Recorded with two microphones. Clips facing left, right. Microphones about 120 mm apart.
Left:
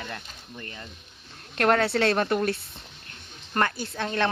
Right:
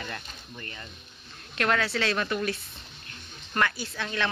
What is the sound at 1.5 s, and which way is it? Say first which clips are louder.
Speech: left 5 dB; 50° left (ahead or behind).